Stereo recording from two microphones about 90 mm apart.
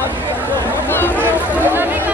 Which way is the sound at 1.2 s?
20° right (ahead or behind).